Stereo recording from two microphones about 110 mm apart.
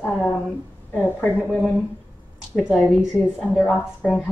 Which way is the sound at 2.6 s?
Centre (ahead or behind).